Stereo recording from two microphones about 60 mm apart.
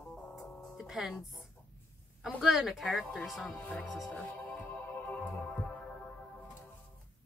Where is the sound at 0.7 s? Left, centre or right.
Centre.